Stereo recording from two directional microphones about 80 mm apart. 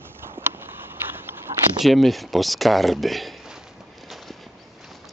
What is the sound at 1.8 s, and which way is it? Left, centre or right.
Speech, centre.